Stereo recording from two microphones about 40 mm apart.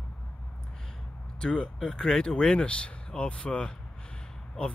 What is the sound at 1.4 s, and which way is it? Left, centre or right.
Speech, left.